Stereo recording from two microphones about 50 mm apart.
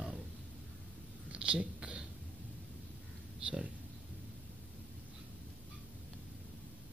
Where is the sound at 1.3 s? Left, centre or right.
Right.